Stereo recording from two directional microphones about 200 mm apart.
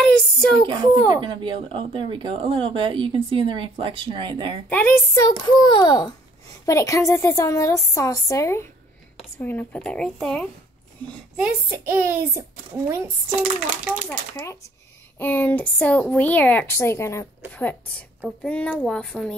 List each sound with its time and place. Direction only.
0.0 s a sound: 5° left (ahead or behind)
0.7 s speech: 20° right (ahead or behind)
4.6 s a woman's voice: 5° left (ahead or behind)
11.3 s a child's voice: 10° right (ahead or behind)
14.3 s a woman's voice: 15° left (ahead or behind)